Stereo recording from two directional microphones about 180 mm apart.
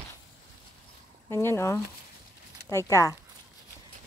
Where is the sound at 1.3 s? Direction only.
15° left (ahead or behind).